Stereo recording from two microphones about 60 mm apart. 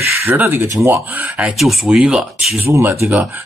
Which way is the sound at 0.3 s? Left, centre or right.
Right.